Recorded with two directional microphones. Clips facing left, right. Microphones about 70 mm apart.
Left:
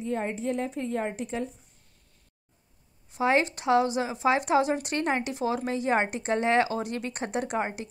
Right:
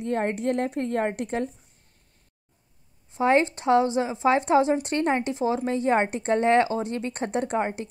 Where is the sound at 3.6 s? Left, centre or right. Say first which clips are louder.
Right 3 dB; right.